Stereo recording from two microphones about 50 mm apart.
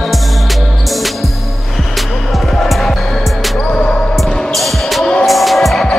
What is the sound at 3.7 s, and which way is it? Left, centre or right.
Music, centre.